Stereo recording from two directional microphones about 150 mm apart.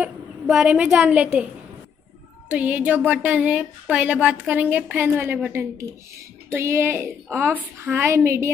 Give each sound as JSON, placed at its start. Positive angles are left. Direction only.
{"t": 0.0, "sound": "a woman's voice", "side_deg": -5}
{"t": 2.5, "sound": "speech", "side_deg": -10}